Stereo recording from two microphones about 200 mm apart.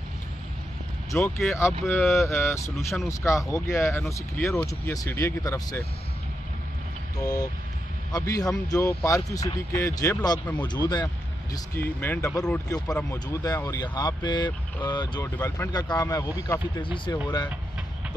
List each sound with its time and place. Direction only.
1.1 s speech: 15° left (ahead or behind)
7.2 s speech: 20° left (ahead or behind)